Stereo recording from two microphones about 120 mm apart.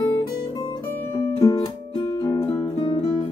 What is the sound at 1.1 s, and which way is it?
Music, 25° left (ahead or behind).